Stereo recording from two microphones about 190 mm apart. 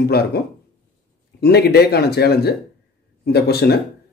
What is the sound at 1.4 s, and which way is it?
A man's voice, 55° left (ahead or behind).